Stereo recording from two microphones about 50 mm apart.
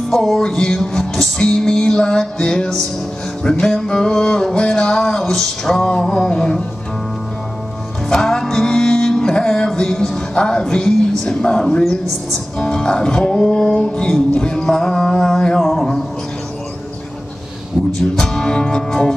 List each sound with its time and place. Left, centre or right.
0.1 s music: centre
8.1 s music: centre
17.8 s music: centre